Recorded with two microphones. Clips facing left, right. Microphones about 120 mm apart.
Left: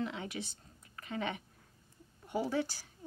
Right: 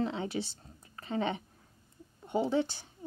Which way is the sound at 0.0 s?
30° right (ahead or behind).